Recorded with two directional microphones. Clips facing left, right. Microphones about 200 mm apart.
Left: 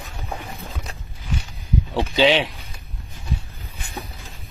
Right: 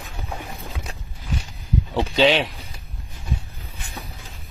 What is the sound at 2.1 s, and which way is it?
Speech, centre (ahead or behind).